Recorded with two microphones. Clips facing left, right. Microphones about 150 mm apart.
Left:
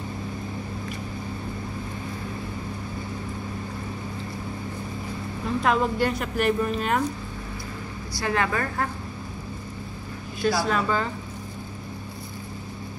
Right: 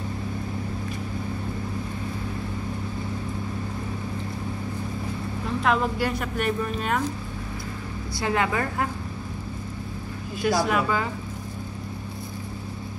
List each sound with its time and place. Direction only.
5.6 s a woman's voice: centre (ahead or behind)
8.2 s speech: 20° right (ahead or behind)
10.4 s speech: 15° right (ahead or behind)